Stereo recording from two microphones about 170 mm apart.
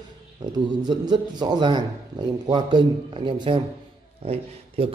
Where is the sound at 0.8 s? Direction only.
25° right (ahead or behind).